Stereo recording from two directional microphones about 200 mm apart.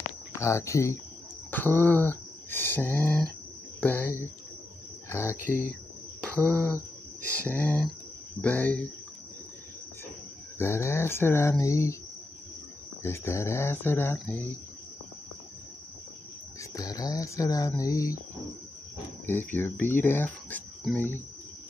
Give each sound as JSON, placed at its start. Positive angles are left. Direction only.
{"t": 0.3, "sound": "speech", "side_deg": 15}
{"t": 1.5, "sound": "a sound", "side_deg": 10}
{"t": 3.8, "sound": "speech", "side_deg": 10}
{"t": 5.1, "sound": "speech", "side_deg": 10}
{"t": 6.2, "sound": "a sound", "side_deg": 10}
{"t": 7.3, "sound": "speech", "side_deg": 10}
{"t": 10.6, "sound": "speech", "side_deg": 15}
{"t": 13.0, "sound": "speech", "side_deg": 15}
{"t": 16.7, "sound": "speech", "side_deg": 15}
{"t": 19.2, "sound": "speech", "side_deg": 10}